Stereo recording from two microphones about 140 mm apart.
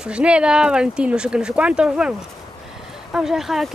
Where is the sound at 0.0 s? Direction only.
10° right (ahead or behind).